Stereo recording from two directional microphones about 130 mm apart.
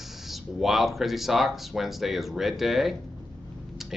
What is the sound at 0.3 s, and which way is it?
Speech, centre (ahead or behind).